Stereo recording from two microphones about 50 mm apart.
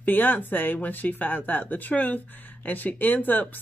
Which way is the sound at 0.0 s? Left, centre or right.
Left.